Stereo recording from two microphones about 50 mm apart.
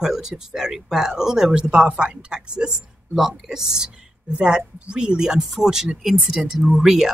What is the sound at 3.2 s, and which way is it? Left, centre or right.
Speech, centre.